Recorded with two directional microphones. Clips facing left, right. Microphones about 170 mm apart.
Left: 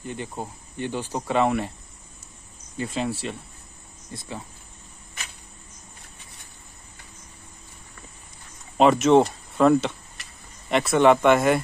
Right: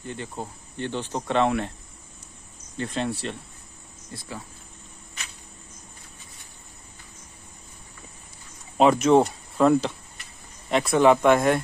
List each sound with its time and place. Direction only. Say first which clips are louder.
0.0 s speech: left 1 dB; 15° left (ahead or behind)
2.8 s speech: left 1 dB; 5° left (ahead or behind)
4.1 s speech: left 2 dB; 20° left (ahead or behind)
8.7 s speech: left 1 dB; centre (ahead or behind)